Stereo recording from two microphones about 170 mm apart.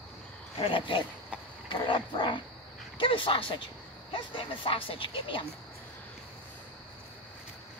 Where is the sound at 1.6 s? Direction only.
30° left (ahead or behind).